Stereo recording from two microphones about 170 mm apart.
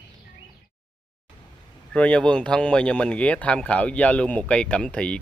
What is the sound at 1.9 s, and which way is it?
Speech, 5° left (ahead or behind).